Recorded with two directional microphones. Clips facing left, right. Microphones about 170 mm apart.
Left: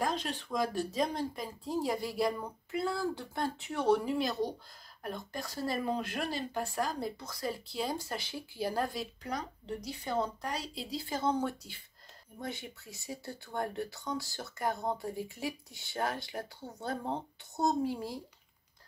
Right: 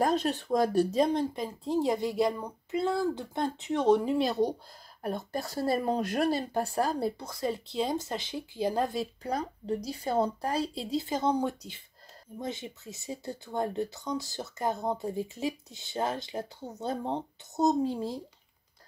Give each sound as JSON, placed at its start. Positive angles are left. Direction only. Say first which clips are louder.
{"t": 0.0, "sound": "speech", "louder": "right 7 dB", "side_deg": -45}
{"t": 0.9, "sound": "speech", "louder": "right 7 dB", "side_deg": -25}
{"t": 5.0, "sound": "speech", "louder": "right 6 dB", "side_deg": -40}